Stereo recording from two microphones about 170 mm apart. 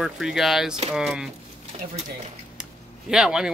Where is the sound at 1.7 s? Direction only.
35° right (ahead or behind).